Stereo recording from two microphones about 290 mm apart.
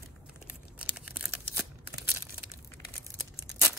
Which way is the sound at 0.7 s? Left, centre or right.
Centre.